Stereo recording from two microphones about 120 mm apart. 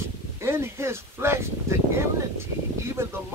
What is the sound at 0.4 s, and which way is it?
Speech, 20° right (ahead or behind).